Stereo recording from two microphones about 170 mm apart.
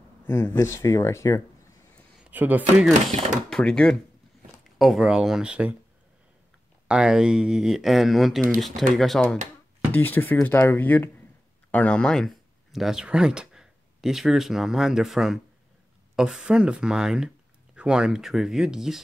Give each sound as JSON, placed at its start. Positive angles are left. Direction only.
{"t": 0.3, "sound": "speech", "side_deg": 15}
{"t": 2.2, "sound": "speech", "side_deg": -10}
{"t": 3.4, "sound": "speech", "side_deg": 5}
{"t": 6.9, "sound": "speech", "side_deg": -5}